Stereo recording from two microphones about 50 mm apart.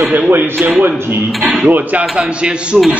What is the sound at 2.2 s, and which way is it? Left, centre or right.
Speech, right.